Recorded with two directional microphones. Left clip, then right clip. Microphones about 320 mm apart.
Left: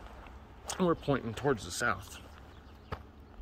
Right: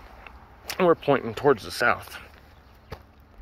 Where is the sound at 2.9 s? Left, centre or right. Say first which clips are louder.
Right 1 dB; right.